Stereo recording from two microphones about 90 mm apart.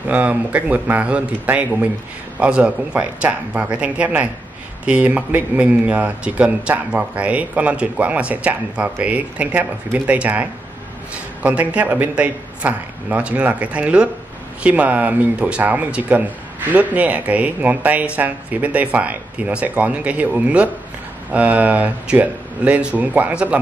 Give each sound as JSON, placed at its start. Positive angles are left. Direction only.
{"t": 0.1, "sound": "speech", "side_deg": -15}